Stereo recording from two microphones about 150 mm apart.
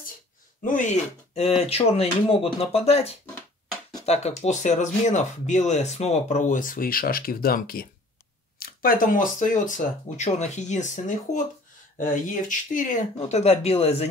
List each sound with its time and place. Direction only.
0.6 s speech: 60° left (ahead or behind); by 14.0 s 45° left (ahead or behind)